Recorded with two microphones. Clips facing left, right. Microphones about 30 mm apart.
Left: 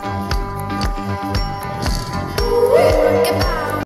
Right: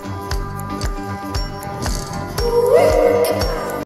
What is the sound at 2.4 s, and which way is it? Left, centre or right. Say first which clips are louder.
Music: even; left.